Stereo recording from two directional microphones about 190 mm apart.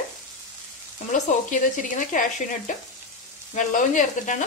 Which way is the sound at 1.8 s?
45° left (ahead or behind).